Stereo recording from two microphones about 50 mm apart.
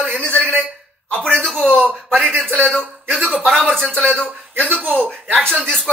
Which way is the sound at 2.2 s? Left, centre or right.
Centre.